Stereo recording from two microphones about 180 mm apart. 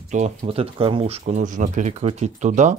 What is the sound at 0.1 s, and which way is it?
Speech, 35° right (ahead or behind).